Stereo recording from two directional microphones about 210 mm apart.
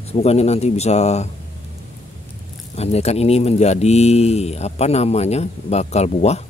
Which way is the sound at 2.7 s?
30° left (ahead or behind).